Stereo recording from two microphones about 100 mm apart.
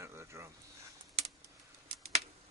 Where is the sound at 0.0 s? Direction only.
25° right (ahead or behind).